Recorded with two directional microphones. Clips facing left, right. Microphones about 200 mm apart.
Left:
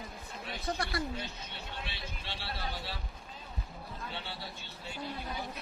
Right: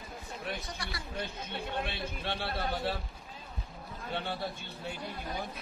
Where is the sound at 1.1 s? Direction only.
55° right (ahead or behind).